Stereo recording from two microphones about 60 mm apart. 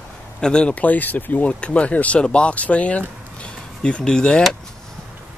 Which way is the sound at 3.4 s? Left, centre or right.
Centre.